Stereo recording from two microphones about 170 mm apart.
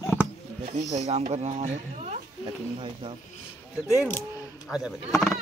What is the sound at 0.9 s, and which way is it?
Speech, 40° right (ahead or behind).